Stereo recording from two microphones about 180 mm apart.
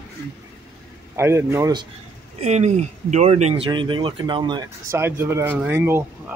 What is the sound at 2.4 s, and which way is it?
Speech, 40° right (ahead or behind).